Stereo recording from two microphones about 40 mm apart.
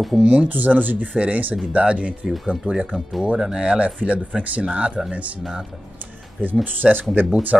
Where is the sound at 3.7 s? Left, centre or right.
Right.